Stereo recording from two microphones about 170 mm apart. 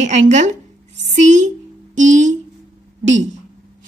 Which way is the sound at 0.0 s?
45° right (ahead or behind).